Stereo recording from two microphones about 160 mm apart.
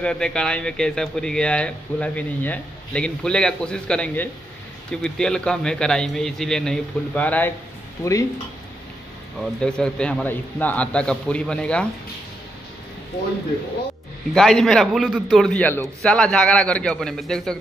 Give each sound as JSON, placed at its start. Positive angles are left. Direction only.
{"t": 0.0, "sound": "speech", "side_deg": 5}
{"t": 8.0, "sound": "speech", "side_deg": 20}
{"t": 9.6, "sound": "a man's voice", "side_deg": 5}
{"t": 14.3, "sound": "speech", "side_deg": 0}